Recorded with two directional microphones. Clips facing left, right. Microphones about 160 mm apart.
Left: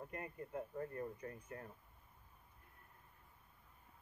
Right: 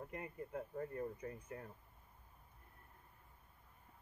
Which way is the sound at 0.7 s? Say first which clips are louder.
Right 3 dB; 5° right (ahead or behind).